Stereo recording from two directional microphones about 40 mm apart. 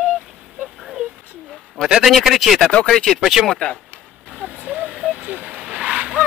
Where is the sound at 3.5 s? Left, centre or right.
Centre.